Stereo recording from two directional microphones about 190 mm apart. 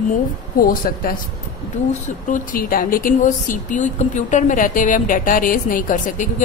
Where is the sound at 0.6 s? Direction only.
50° left (ahead or behind).